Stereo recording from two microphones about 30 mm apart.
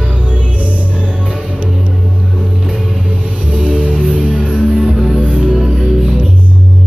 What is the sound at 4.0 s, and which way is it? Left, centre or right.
Music, right.